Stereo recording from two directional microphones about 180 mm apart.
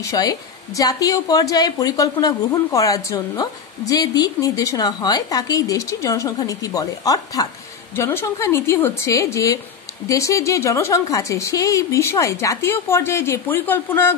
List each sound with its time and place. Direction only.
0.0 s a woman's voice: 20° left (ahead or behind)